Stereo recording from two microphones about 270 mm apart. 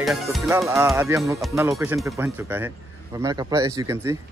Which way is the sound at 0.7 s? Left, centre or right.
Centre.